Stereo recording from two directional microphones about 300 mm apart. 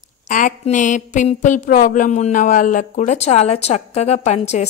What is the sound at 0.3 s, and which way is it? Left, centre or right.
Speech, left.